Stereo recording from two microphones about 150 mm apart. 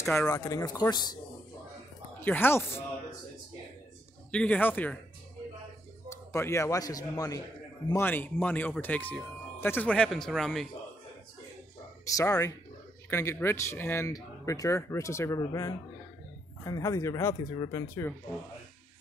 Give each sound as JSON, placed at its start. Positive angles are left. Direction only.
{"t": 0.3, "sound": "speech", "side_deg": 20}
{"t": 2.2, "sound": "speech", "side_deg": 15}
{"t": 4.3, "sound": "speech", "side_deg": 10}
{"t": 6.0, "sound": "a man's voice", "side_deg": 20}
{"t": 7.9, "sound": "speech", "side_deg": 15}
{"t": 12.2, "sound": "speech", "side_deg": 25}